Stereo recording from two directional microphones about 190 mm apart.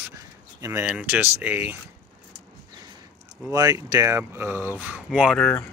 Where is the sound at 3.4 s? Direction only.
15° right (ahead or behind).